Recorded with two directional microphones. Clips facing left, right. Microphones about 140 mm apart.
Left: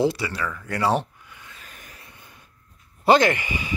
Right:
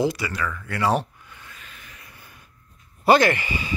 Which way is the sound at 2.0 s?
25° left (ahead or behind).